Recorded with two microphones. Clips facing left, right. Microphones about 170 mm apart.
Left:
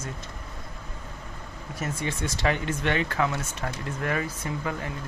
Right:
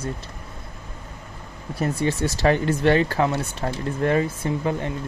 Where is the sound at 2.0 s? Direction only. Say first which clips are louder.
Right 7 dB; 35° right (ahead or behind).